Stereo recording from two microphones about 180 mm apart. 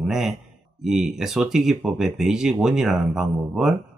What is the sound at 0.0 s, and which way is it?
Speech, centre (ahead or behind).